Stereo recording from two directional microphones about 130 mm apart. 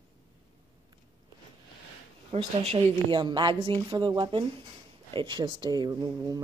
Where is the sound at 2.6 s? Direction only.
45° right (ahead or behind); by 6.4 s 30° right (ahead or behind).